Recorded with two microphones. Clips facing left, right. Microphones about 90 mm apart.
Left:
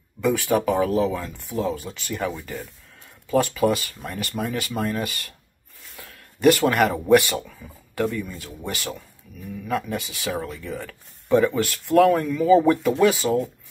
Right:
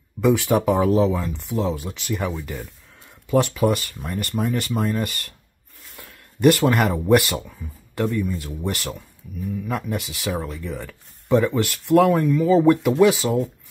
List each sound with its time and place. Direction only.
0.2 s speech: 15° right (ahead or behind)
1.9 s speech: 5° right (ahead or behind)
5.9 s a sound: centre (ahead or behind)
7.1 s speech: 5° right (ahead or behind)